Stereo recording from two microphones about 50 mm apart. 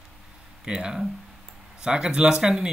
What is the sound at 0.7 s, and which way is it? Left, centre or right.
Speech, centre.